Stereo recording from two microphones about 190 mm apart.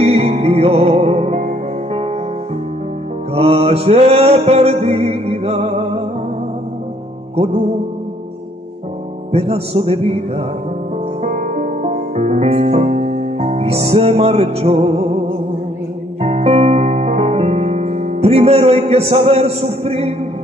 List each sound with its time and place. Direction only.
0.0 s music: 35° right (ahead or behind)
3.3 s mantra: 30° right (ahead or behind)
9.3 s music: 30° right (ahead or behind)
16.2 s music: 35° right (ahead or behind)